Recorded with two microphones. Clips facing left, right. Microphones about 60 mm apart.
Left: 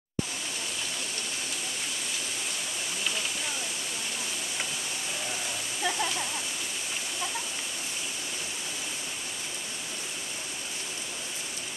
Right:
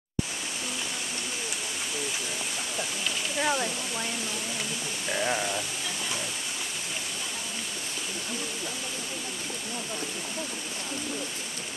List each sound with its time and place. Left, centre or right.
3.3 s speech: right